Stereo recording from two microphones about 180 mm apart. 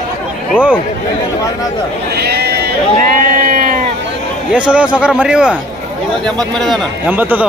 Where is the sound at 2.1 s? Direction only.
65° right (ahead or behind).